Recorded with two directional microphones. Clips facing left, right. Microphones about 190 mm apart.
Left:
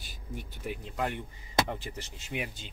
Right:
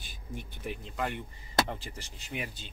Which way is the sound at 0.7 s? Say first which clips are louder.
Left 1 dB; 15° left (ahead or behind).